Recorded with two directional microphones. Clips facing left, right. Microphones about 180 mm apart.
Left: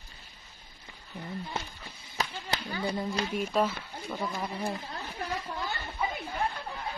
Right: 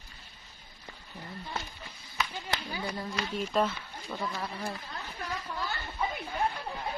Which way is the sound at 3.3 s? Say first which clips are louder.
Even; 10° left (ahead or behind).